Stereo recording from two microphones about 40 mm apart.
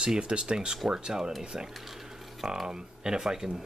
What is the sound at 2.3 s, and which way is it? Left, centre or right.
Speech, centre.